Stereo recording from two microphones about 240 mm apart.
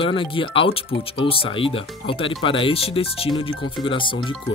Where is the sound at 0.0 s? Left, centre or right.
Left.